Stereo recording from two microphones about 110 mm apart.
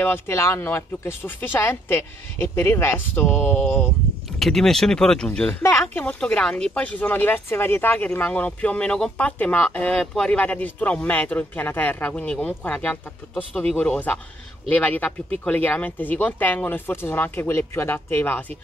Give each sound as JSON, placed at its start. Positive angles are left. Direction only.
{"t": 0.0, "sound": "speech", "side_deg": 20}
{"t": 4.4, "sound": "speech", "side_deg": 5}